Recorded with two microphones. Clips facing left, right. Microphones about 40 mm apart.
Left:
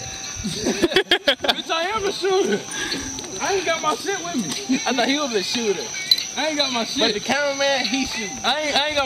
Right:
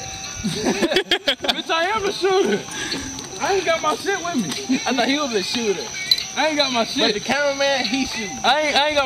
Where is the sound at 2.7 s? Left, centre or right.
Centre.